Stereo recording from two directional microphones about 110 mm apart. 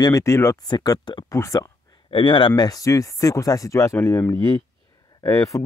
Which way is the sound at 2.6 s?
35° left (ahead or behind).